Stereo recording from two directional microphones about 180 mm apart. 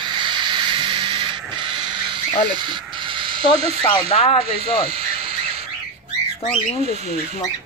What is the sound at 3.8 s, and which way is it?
Speech, 30° left (ahead or behind).